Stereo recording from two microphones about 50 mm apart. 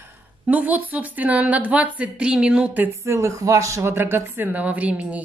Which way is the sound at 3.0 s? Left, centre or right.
Right.